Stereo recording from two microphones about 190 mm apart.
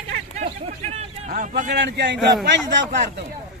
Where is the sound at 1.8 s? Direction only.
65° right (ahead or behind).